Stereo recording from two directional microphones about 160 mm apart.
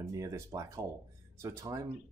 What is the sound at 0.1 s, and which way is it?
Speech, 20° right (ahead or behind).